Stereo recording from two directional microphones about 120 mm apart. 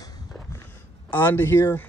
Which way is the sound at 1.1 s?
15° left (ahead or behind).